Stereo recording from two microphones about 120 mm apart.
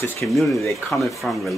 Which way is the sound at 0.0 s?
20° left (ahead or behind).